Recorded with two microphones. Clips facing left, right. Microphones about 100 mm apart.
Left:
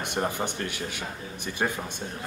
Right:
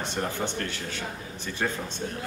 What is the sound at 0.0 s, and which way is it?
Speech, 15° left (ahead or behind).